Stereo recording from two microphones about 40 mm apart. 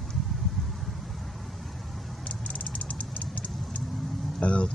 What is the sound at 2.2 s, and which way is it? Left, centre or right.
Vehicle, left.